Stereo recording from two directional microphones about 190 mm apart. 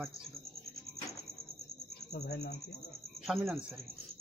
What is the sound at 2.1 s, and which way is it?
Speech, 55° left (ahead or behind).